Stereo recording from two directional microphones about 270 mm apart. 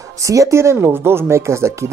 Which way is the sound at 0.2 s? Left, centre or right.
Centre.